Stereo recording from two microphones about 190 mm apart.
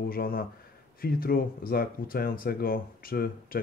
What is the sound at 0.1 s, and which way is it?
Speech, 50° left (ahead or behind).